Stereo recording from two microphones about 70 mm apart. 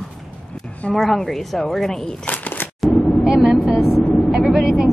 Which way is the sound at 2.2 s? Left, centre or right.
Left.